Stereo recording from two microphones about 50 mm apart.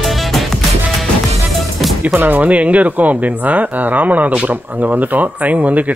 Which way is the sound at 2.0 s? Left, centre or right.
Right.